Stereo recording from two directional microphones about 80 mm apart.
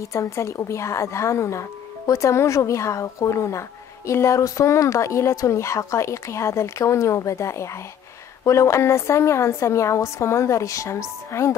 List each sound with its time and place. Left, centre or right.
0.0 s a woman's voice: left